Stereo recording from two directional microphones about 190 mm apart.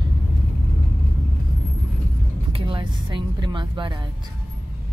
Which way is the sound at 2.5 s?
25° right (ahead or behind).